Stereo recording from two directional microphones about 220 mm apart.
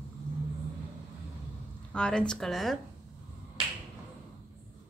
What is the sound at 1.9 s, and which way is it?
Speech, 5° left (ahead or behind).